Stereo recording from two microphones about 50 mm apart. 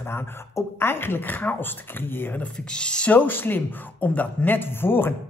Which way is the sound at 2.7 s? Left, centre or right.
Centre.